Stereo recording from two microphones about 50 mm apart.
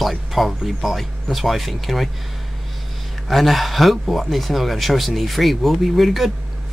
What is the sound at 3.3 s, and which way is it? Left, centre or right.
Speech, centre.